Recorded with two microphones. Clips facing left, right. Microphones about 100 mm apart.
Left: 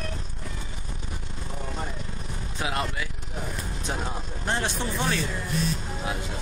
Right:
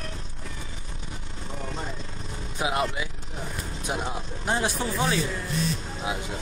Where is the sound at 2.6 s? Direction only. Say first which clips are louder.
Right 3 dB; 15° right (ahead or behind).